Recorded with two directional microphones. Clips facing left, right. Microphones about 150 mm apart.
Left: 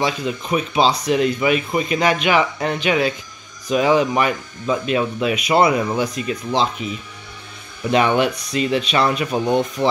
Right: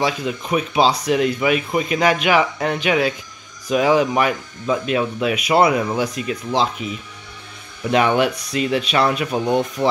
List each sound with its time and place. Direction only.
0.0 s speech: 5° right (ahead or behind)